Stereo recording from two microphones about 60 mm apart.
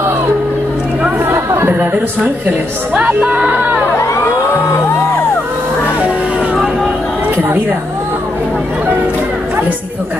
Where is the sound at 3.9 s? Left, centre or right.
Left.